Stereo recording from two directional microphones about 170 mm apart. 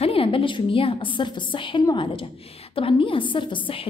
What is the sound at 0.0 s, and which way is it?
A woman's voice, 35° left (ahead or behind).